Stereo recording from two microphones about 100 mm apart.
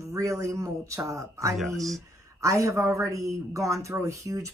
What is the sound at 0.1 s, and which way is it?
Speech, 30° right (ahead or behind).